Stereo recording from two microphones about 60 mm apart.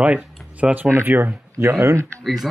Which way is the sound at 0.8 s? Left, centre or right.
Right.